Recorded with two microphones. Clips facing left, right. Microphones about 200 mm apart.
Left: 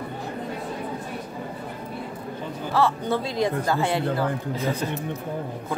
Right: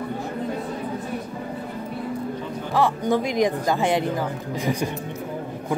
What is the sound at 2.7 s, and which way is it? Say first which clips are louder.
Speech: right 2 dB; 15° right (ahead or behind).